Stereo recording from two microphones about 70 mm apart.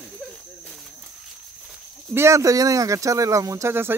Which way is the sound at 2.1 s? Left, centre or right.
Right.